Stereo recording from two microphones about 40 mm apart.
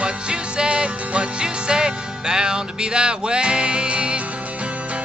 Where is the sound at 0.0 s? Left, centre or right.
Right.